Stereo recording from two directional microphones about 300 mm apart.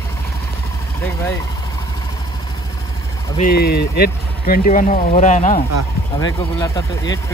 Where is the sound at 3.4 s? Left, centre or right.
Left.